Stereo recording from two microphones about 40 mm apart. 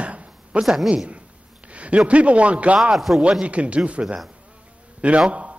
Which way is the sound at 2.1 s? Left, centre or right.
Right.